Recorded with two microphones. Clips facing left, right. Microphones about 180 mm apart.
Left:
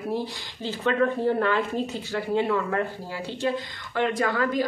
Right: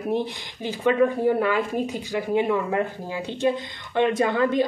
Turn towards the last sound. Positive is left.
turn(degrees=-20)  # may be behind; listen again after turning